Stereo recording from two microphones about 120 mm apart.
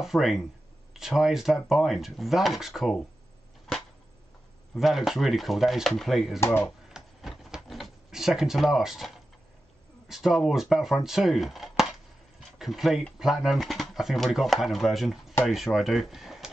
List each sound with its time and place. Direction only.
0.0 s speech: centre (ahead or behind)
3.7 s a sound: 5° left (ahead or behind)
4.7 s speech: centre (ahead or behind)
6.4 s speech: 20° left (ahead or behind)
6.9 s a sound: centre (ahead or behind)
10.0 s speech: 5° right (ahead or behind)
11.1 s chopping: centre (ahead or behind)
12.5 s speech: centre (ahead or behind)